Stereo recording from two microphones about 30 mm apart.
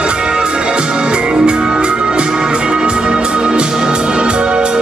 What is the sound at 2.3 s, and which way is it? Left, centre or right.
Music, right.